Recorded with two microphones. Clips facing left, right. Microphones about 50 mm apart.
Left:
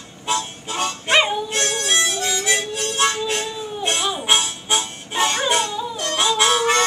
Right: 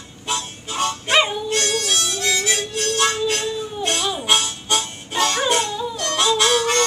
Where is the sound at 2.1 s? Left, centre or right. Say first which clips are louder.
Even; centre.